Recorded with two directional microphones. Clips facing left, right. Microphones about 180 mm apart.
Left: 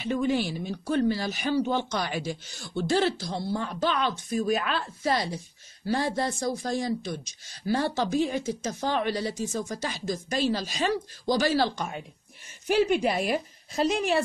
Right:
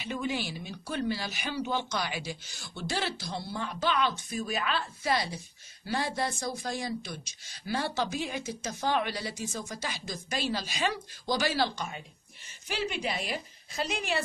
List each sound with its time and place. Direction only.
0.0 s speech: 45° left (ahead or behind)